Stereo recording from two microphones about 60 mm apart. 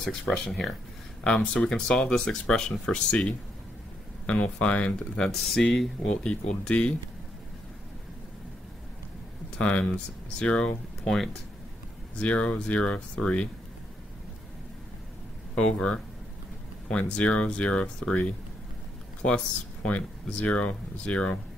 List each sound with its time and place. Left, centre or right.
0.3 s speech: centre
5.5 s speech: centre
9.6 s speech: left
12.2 s speech: centre
15.5 s speech: centre